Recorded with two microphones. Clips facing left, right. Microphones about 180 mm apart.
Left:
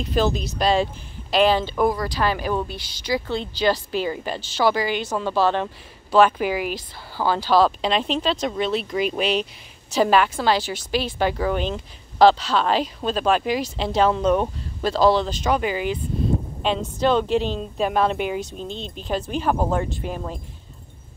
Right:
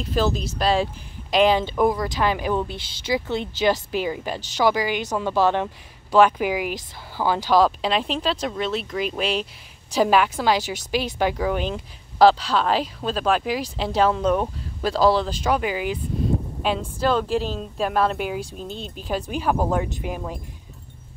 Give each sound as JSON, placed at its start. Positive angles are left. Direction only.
{"t": 0.0, "sound": "speech", "side_deg": 0}
{"t": 1.3, "sound": "speech", "side_deg": -15}
{"t": 1.8, "sound": "speech", "side_deg": 0}
{"t": 2.0, "sound": "speech", "side_deg": -20}